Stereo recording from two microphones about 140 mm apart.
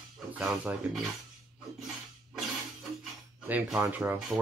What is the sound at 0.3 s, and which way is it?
Speech, 10° right (ahead or behind).